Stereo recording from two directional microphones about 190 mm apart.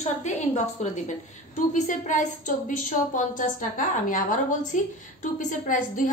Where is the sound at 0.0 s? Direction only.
35° left (ahead or behind).